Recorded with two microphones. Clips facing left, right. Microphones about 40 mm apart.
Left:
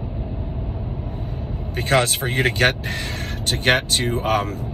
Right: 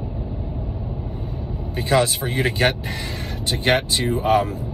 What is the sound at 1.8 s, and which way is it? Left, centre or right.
Speech, left.